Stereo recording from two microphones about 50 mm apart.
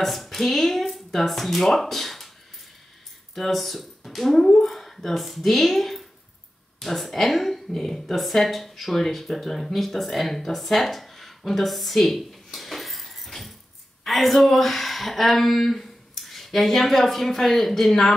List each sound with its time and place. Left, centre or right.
0.0 s speech: centre
3.3 s speech: centre
4.4 s speech: centre
4.6 s a woman's voice: centre